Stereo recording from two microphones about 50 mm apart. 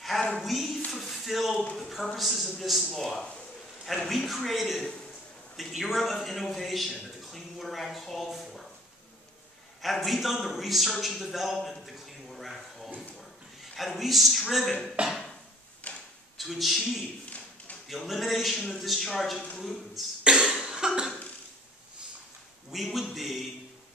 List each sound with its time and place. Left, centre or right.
0.4 s speech: centre
0.9 s a sound: centre
2.1 s speech: centre
9.8 s a man's voice: centre
15.0 s a sound: right
15.8 s a sound: left
16.3 s speech: centre
20.4 s cough: centre
22.9 s speech: centre